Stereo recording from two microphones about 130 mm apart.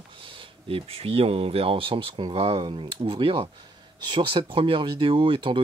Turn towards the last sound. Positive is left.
turn(degrees=-40)  # may be behind; listen again after turning